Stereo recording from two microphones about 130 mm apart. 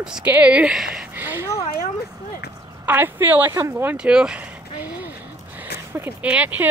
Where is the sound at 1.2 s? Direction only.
15° right (ahead or behind).